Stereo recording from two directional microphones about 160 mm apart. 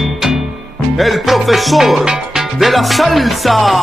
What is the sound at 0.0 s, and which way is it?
Music, centre (ahead or behind).